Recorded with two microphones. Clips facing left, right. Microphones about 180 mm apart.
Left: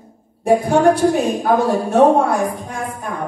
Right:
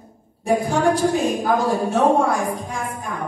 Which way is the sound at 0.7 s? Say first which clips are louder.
Left 5 dB; 55° left (ahead or behind).